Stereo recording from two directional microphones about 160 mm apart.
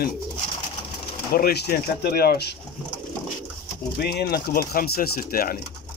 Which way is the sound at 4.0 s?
85° left.